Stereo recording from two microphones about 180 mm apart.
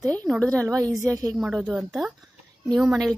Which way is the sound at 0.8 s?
20° right (ahead or behind).